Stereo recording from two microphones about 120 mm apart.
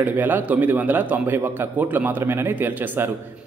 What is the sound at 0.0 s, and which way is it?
A man's voice, 15° right (ahead or behind).